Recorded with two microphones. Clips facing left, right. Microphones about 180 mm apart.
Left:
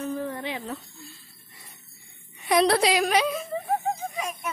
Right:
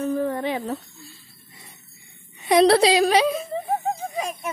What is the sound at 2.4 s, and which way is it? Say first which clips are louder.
Speech: right 5 dB; 25° right (ahead or behind).